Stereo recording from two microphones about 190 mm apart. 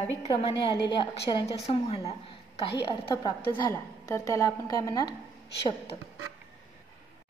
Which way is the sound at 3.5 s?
20° left (ahead or behind).